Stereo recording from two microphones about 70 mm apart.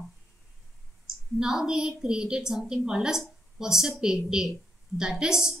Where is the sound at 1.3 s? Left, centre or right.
Centre.